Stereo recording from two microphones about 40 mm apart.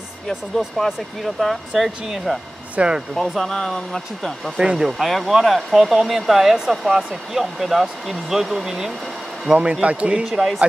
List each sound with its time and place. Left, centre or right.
0.8 s speech: centre
1.7 s speech: centre
2.7 s speech: right
3.2 s speech: centre
4.6 s speech: centre
4.9 s speech: centre
9.5 s speech: right
10.2 s speech: centre